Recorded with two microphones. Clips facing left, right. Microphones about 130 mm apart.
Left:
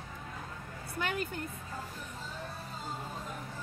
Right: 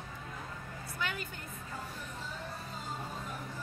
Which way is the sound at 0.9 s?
50° left (ahead or behind).